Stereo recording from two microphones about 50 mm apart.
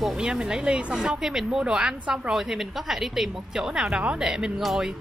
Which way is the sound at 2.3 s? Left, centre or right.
Centre.